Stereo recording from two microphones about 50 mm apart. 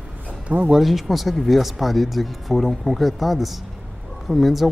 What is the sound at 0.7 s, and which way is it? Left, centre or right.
Speech, centre.